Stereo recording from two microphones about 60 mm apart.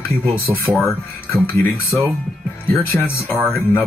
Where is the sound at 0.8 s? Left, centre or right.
Left.